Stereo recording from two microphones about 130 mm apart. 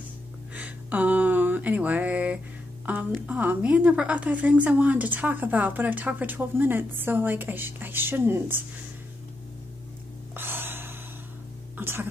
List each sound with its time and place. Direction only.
0.6 s a sound: 10° right (ahead or behind)
3.3 s a woman's voice: 10° right (ahead or behind)
10.3 s gasp: 15° right (ahead or behind)
11.7 s throat clearing: 15° right (ahead or behind)